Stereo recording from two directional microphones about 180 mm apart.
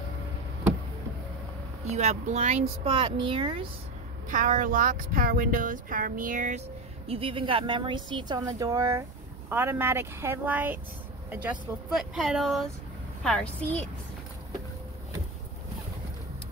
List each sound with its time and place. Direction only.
1.9 s speech: 40° right (ahead or behind)
4.3 s speech: 45° right (ahead or behind)
7.1 s speech: 30° right (ahead or behind); by 13.8 s 5° left (ahead or behind)